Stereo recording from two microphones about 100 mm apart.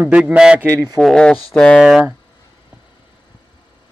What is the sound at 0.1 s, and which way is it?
Speech, 10° right (ahead or behind).